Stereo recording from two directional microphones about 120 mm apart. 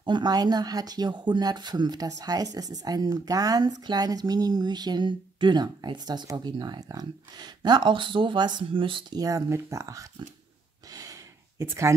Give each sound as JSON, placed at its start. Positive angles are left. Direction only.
{"t": 0.0, "sound": "speech", "side_deg": -35}
{"t": 9.2, "sound": "speech", "side_deg": -25}
{"t": 10.9, "sound": "a sound", "side_deg": -30}